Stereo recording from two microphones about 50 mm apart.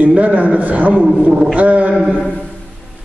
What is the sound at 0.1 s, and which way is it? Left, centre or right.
Speech, right.